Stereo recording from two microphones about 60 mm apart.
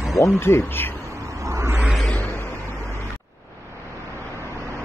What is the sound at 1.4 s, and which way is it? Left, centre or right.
Vehicle, right.